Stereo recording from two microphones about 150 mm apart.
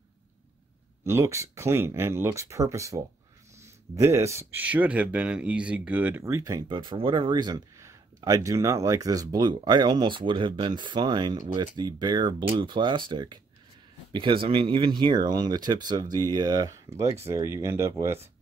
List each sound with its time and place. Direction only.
1.0 s speech: 20° right (ahead or behind)
6.2 s speech: 20° right (ahead or behind)